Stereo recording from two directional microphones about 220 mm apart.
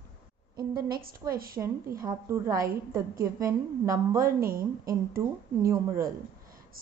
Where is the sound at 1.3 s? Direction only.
40° right (ahead or behind).